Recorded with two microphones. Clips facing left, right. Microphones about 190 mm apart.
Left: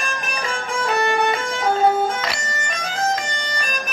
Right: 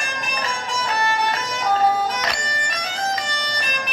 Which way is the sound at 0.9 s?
50° left (ahead or behind).